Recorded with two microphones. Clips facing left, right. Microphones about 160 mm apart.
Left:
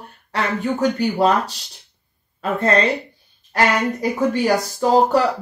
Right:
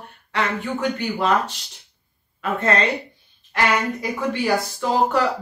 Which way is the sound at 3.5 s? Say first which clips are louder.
Left 3 dB; 40° left (ahead or behind).